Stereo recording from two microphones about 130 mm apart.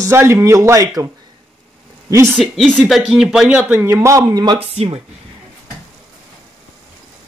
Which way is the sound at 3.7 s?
20° right (ahead or behind).